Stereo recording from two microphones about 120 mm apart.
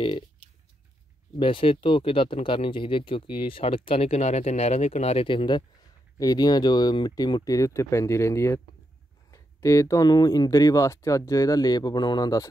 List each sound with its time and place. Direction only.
1.4 s speech: 45° left (ahead or behind)
6.1 s speech: 30° left (ahead or behind)